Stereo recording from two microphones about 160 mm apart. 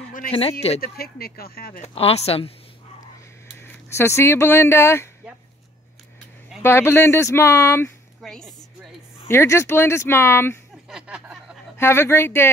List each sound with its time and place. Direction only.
0.3 s speech: 35° left (ahead or behind)
0.7 s speech: 70° left (ahead or behind)
1.8 s speech: 40° left (ahead or behind)
3.6 s speech: 15° left (ahead or behind)
6.6 s speech: 15° left (ahead or behind)
8.2 s a woman's voice: 5° left (ahead or behind)
9.3 s speech: 15° left (ahead or behind)
10.9 s a sound: 5° right (ahead or behind)
11.7 s speech: 15° left (ahead or behind)